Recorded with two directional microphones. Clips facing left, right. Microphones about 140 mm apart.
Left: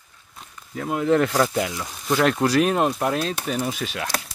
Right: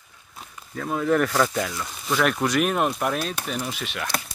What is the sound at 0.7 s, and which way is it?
Speech, 20° left (ahead or behind).